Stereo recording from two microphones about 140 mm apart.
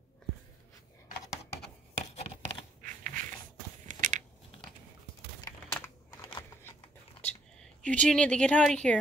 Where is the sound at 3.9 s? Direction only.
65° right (ahead or behind).